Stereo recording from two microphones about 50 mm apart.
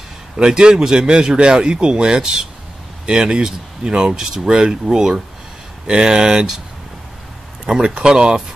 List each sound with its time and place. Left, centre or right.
0.4 s a man's voice: centre
7.6 s a man's voice: centre